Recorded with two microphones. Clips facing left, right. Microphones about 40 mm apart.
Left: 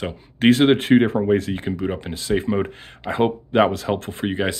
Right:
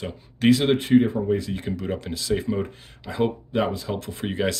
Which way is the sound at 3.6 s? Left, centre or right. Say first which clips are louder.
Left 6 dB; left.